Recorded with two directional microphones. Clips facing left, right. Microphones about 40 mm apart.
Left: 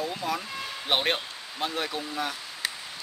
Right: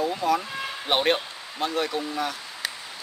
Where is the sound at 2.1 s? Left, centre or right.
Centre.